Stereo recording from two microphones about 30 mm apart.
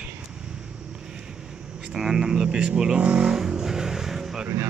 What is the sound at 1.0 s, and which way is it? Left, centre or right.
Vehicle, right.